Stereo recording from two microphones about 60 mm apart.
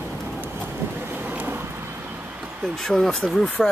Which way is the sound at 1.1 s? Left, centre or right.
Right.